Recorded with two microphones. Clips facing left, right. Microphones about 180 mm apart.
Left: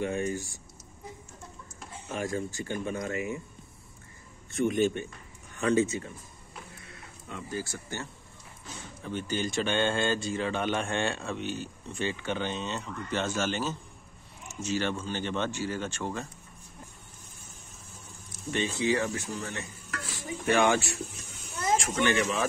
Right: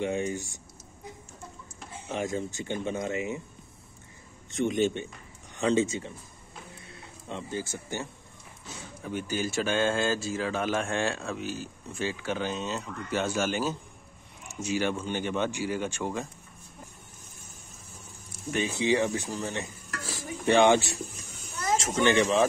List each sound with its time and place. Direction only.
0.0 s speech: 20° right (ahead or behind)
2.1 s speech: 20° right (ahead or behind)
4.5 s speech: 20° right (ahead or behind)
18.5 s speech: 15° right (ahead or behind)
19.2 s speech: 30° right (ahead or behind)
20.0 s stir: 35° right (ahead or behind)
20.4 s speech: 20° right (ahead or behind)